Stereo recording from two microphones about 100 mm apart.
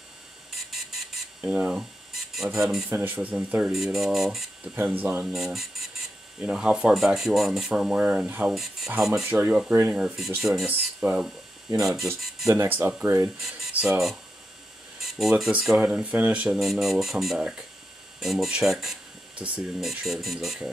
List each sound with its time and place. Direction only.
1.4 s speech: 15° right (ahead or behind)
2.9 s speech: 15° right (ahead or behind)
3.7 s speech: 5° right (ahead or behind)
4.7 s speech: 15° right (ahead or behind)
5.3 s speech: 5° right (ahead or behind)
10.7 s speech: 15° right (ahead or behind)
12.4 s speech: 25° right (ahead or behind)
13.7 s speech: 5° right (ahead or behind)
16.5 s speech: centre (ahead or behind)